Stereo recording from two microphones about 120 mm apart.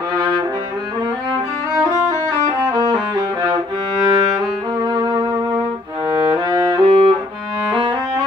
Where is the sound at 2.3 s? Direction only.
30° right (ahead or behind).